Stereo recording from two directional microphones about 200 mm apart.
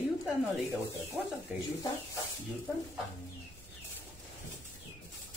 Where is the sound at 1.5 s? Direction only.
10° right (ahead or behind).